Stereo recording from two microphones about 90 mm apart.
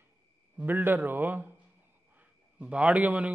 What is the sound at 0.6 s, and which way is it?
Speech, 20° right (ahead or behind).